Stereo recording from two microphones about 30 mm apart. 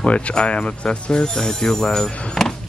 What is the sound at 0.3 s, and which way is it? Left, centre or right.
Speech, left.